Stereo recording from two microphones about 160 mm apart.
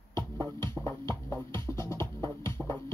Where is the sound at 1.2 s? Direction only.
20° left (ahead or behind).